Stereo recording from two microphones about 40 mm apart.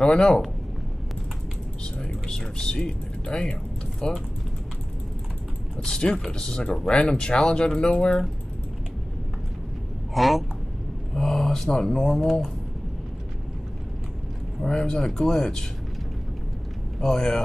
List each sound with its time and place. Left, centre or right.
0.0 s speech: centre
2.0 s a sound: centre
2.8 s speech: left
5.8 s speech: left
10.1 s speech: centre
11.1 s a sound: centre
11.7 s speech: centre
14.6 s speech: centre
17.0 s speech: centre